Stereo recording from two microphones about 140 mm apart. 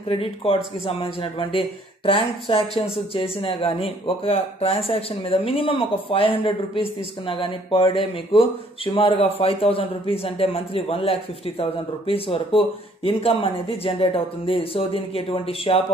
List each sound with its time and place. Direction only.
0.1 s a woman's voice: 40° left (ahead or behind)